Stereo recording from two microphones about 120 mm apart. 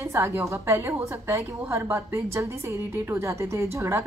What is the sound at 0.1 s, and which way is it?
A woman's voice, 20° right (ahead or behind).